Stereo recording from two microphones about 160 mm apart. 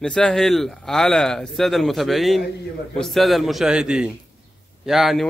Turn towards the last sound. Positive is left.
turn(degrees=0)  # may be behind; listen again after turning